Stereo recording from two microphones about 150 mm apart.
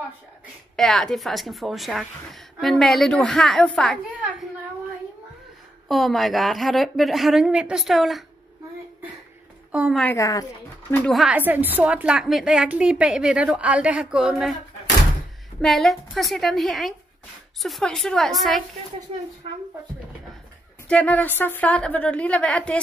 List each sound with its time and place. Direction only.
0.7 s a woman's voice: 5° left (ahead or behind)
5.9 s a woman's voice: centre (ahead or behind)
9.7 s a woman's voice: 10° right (ahead or behind)
10.1 s a woman's voice: 25° left (ahead or behind)
10.9 s a woman's voice: 5° left (ahead or behind)
11.2 s a woman's voice: 10° right (ahead or behind)
15.6 s a woman's voice: centre (ahead or behind)
20.9 s a woman's voice: 10° left (ahead or behind)